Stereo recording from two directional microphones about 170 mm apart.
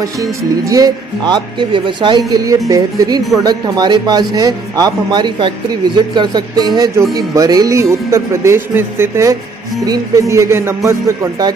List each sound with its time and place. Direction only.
0.2 s speech: 20° right (ahead or behind)